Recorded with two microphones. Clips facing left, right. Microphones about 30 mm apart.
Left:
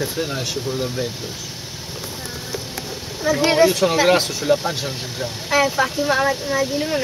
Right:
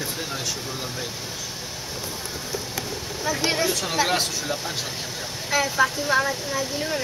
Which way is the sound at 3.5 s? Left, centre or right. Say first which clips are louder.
Left 8 dB; left.